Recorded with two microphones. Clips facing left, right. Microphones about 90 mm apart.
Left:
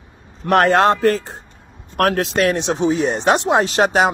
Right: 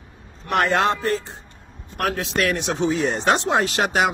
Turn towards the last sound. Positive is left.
turn(degrees=30)  # may be behind; listen again after turning